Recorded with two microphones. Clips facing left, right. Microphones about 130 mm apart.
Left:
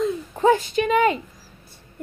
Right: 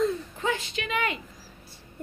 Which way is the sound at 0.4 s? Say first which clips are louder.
Left 15 dB; 40° left (ahead or behind).